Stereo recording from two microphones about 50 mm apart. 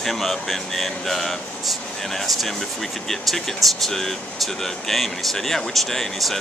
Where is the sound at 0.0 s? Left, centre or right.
Centre.